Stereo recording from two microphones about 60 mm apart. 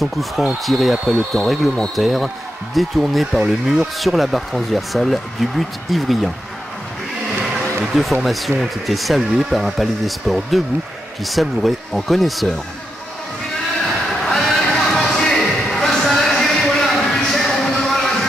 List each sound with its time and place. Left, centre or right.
0.0 s speech: centre
7.8 s speech: centre
14.2 s a sound: centre